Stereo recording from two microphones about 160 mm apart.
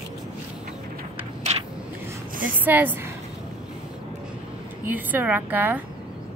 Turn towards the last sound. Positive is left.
turn(degrees=-10)  # may be behind; listen again after turning